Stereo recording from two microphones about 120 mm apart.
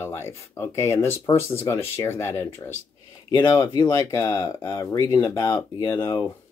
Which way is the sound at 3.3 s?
35° left (ahead or behind).